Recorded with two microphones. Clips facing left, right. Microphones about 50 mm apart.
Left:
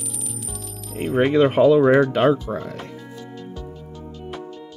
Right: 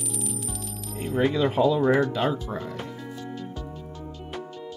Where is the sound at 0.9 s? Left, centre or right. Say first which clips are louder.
Left 7 dB; left.